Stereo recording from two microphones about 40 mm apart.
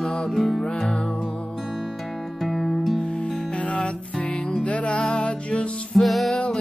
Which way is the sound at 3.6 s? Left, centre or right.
Left.